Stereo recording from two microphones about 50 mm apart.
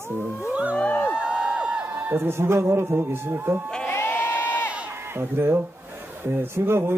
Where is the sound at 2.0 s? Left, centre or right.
Right.